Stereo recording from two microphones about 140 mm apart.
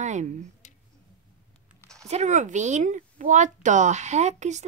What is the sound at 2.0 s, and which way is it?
Speech, 55° right (ahead or behind).